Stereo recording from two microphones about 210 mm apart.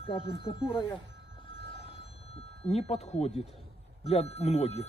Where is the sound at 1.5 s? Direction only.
25° left (ahead or behind).